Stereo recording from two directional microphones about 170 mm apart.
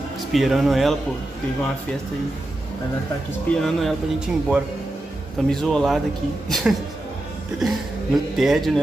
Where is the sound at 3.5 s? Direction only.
10° left (ahead or behind).